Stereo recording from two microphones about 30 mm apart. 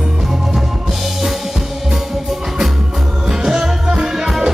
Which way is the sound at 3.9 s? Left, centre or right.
Right.